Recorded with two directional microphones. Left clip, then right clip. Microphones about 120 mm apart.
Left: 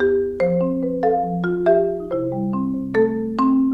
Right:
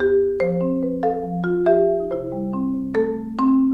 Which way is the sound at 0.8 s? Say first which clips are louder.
Left 3 dB; 10° left (ahead or behind).